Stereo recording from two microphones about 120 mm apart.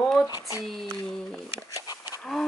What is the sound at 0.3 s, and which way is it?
Speech, 25° right (ahead or behind).